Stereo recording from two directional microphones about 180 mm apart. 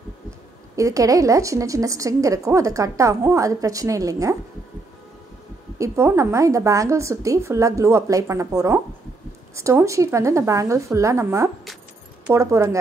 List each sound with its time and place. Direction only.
0.7 s a woman's voice: 20° right (ahead or behind)
5.8 s a woman's voice: 15° right (ahead or behind)